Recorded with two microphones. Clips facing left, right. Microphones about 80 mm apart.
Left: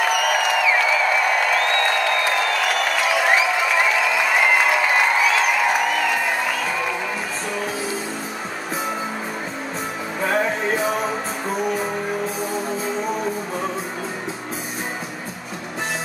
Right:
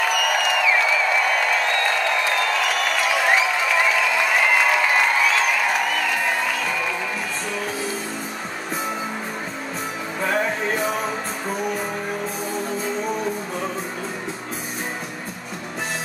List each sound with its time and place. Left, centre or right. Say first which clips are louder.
0.1 s music: left 2 dB; centre
3.2 s a sound: left 1 dB; centre
10.2 s music: left 2 dB; centre